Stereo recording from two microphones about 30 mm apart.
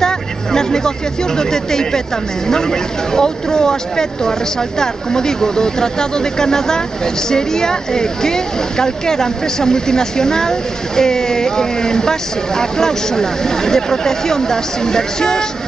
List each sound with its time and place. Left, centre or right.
0.0 s speech: centre